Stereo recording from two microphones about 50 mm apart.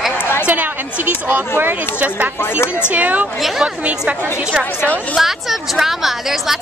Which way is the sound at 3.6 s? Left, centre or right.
Centre.